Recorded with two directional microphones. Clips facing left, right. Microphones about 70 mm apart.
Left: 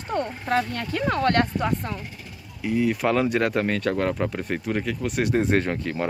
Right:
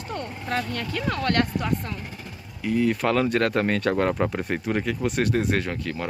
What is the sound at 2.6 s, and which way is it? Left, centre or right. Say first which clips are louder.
Speech: even; centre.